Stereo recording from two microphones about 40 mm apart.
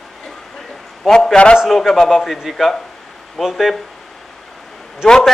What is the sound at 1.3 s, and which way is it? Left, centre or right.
Speech, left.